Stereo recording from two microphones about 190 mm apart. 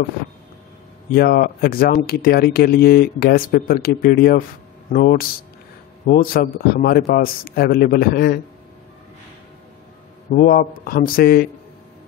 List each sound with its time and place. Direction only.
1.1 s speech: 55° left (ahead or behind)
10.3 s speech: 45° left (ahead or behind)